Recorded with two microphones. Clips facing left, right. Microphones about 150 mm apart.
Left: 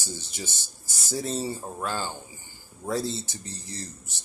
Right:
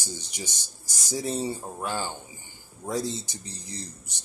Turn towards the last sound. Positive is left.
turn(degrees=-15)  # may be behind; listen again after turning